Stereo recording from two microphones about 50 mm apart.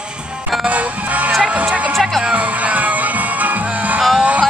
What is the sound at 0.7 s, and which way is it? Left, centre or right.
Music, right.